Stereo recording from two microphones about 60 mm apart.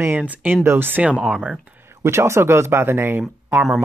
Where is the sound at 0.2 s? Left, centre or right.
Right.